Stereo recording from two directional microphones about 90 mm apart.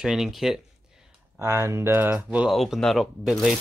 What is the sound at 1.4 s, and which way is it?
Speech, 30° right (ahead or behind).